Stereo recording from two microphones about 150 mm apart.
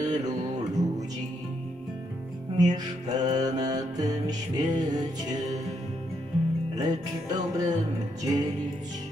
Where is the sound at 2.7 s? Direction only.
25° right (ahead or behind).